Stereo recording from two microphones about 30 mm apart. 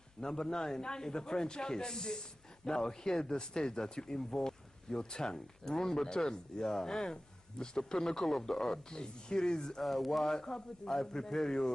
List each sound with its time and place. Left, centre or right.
0.2 s a man's voice: left
9.8 s a sound: centre
10.2 s a man's voice: left